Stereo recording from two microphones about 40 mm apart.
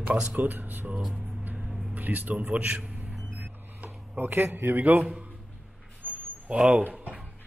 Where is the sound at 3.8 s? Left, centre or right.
Right.